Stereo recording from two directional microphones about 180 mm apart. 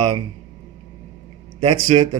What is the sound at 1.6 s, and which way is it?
Speech, 25° right (ahead or behind).